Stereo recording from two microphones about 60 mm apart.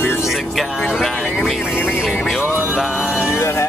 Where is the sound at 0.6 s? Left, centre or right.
Centre.